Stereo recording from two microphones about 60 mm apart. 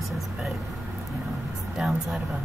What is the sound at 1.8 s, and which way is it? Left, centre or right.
Speech, centre.